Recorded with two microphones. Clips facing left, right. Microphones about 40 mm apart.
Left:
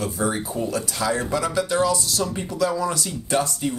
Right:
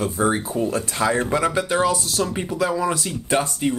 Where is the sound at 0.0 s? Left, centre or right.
Right.